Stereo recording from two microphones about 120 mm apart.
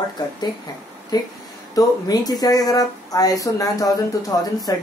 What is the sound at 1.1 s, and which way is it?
Speech, 35° left (ahead or behind).